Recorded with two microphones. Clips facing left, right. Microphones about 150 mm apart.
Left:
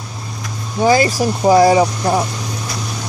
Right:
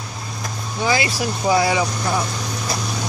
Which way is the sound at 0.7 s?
45° left (ahead or behind).